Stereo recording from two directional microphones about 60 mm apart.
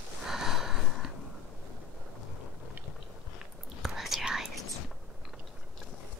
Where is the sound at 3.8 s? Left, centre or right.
Centre.